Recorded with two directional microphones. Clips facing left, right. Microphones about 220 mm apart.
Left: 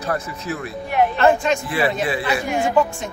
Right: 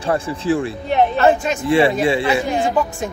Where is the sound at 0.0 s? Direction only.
30° right (ahead or behind).